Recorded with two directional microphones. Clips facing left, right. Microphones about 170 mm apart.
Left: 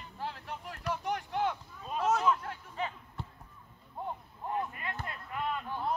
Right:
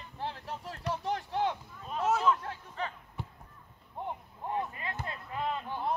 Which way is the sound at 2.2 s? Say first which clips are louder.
Right 1 dB; 15° left (ahead or behind).